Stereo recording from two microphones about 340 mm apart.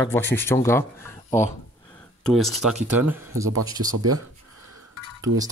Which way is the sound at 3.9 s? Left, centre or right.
Right.